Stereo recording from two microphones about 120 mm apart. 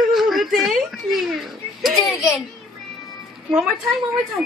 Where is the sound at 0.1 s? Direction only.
Centre (ahead or behind).